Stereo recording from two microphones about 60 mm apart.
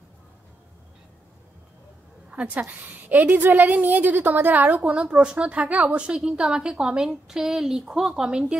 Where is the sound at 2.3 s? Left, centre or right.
Right.